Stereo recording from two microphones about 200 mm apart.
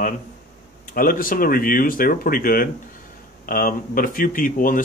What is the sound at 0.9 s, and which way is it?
Speech, 45° left (ahead or behind).